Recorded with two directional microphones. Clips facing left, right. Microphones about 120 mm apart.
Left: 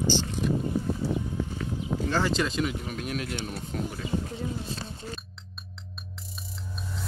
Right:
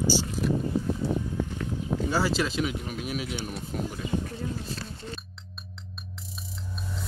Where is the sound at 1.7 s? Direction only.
15° left (ahead or behind).